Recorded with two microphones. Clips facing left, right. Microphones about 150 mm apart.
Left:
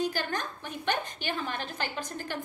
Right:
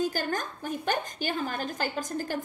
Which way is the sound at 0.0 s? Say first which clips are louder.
Right 2 dB; 45° right (ahead or behind).